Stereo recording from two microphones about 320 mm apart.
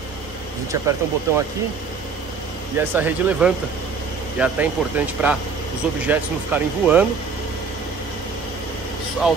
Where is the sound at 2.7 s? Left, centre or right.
Centre.